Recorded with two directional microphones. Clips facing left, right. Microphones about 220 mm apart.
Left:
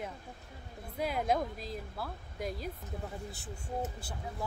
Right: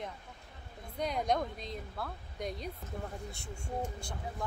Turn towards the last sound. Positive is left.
turn(degrees=5)  # may be behind; listen again after turning